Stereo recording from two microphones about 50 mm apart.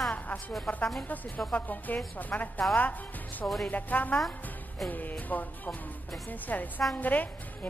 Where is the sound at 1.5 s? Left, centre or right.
Left.